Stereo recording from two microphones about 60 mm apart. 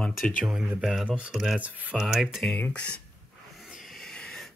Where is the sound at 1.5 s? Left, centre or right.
Right.